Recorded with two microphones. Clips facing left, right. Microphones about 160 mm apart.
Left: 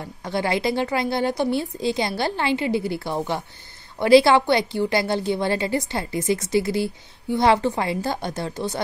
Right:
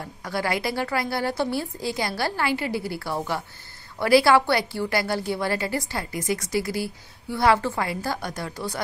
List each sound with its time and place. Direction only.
0.2 s a woman's voice: 25° left (ahead or behind)